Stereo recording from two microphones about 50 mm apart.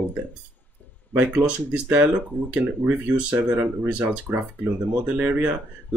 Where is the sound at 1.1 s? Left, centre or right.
Right.